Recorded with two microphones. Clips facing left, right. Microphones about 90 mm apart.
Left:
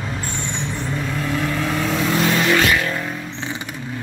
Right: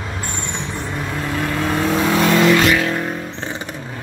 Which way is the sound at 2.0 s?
75° right (ahead or behind).